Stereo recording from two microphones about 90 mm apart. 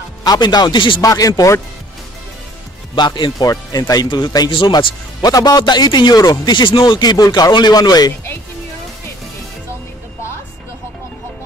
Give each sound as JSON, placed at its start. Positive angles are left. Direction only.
{"t": 0.2, "sound": "a man's voice", "side_deg": 50}
{"t": 1.0, "sound": "speech", "side_deg": 40}
{"t": 3.2, "sound": "speech", "side_deg": 60}
{"t": 3.4, "sound": "a man's voice", "side_deg": 40}
{"t": 4.6, "sound": "speech", "side_deg": 70}
{"t": 5.2, "sound": "a man's voice", "side_deg": 45}
{"t": 6.5, "sound": "speech", "side_deg": 60}
{"t": 6.8, "sound": "a man's voice", "side_deg": 50}